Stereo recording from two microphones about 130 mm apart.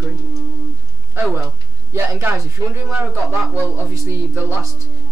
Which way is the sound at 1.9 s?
20° right (ahead or behind).